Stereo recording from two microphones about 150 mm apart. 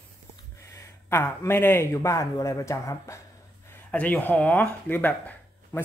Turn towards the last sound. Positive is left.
turn(degrees=10)  # may be behind; listen again after turning